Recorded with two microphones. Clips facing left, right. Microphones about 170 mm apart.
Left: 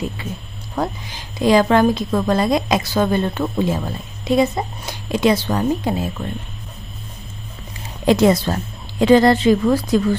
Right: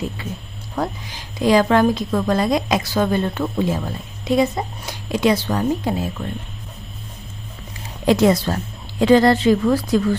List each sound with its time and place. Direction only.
0.8 s a woman's voice: 20° left (ahead or behind)
8.0 s a woman's voice: 20° left (ahead or behind)